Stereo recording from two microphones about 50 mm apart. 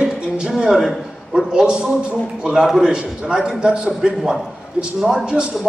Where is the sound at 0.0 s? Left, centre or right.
Centre.